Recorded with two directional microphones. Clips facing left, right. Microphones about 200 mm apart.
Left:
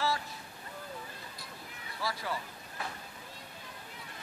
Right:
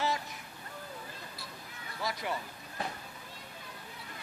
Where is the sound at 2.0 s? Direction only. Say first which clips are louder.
Right 1 dB; 20° right (ahead or behind).